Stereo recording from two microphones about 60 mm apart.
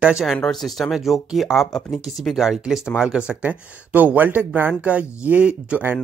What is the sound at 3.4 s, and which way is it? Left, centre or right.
Speech, right.